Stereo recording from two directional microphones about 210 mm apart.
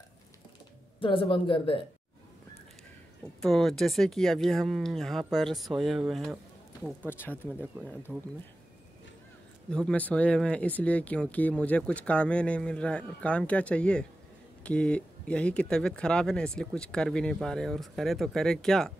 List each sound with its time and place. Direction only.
0.9 s speech: 25° left (ahead or behind)
3.3 s speech: centre (ahead or behind)
7.1 s speech: 10° left (ahead or behind)
9.7 s speech: 5° left (ahead or behind)